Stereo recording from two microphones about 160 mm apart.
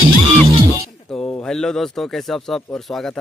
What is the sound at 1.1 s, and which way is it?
Speech, 5° left (ahead or behind).